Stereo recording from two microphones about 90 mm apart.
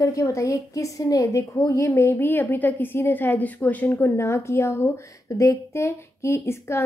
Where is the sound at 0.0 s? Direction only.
35° left (ahead or behind).